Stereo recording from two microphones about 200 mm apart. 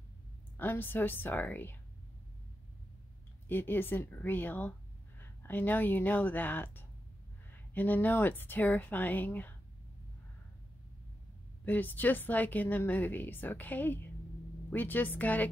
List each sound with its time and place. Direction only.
0.6 s a woman's voice: 10° left (ahead or behind)
3.4 s a woman's voice: 10° left (ahead or behind)
11.6 s a woman's voice: 10° left (ahead or behind)